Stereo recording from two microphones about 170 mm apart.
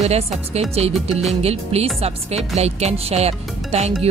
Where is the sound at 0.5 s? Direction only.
35° right (ahead or behind).